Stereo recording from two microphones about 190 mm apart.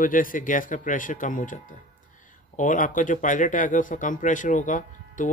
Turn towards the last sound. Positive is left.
turn(degrees=40)  # may be behind; listen again after turning